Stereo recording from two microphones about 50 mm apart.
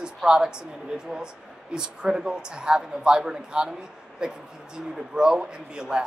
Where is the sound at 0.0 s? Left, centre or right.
Centre.